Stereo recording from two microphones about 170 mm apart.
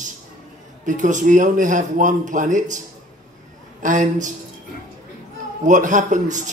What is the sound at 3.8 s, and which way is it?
Speech, 45° right (ahead or behind).